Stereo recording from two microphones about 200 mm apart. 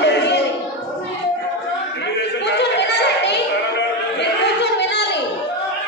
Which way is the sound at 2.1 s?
60° left (ahead or behind).